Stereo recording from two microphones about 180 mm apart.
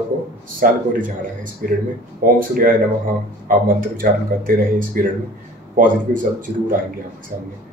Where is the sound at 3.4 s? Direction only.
50° right (ahead or behind).